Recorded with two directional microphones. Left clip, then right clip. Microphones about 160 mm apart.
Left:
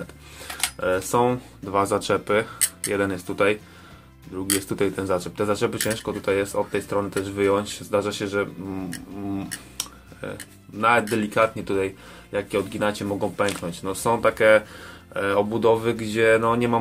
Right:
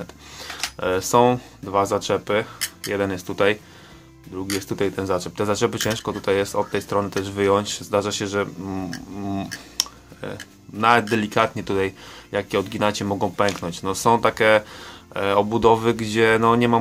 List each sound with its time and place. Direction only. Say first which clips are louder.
0.7 s speech: right 4 dB; 30° right (ahead or behind)
1.7 s speech: right 1 dB; 15° right (ahead or behind)
4.4 s speech: even; 15° right (ahead or behind); by 9.8 s 35° right (ahead or behind)
10.2 s speech: right 1 dB; 20° right (ahead or behind)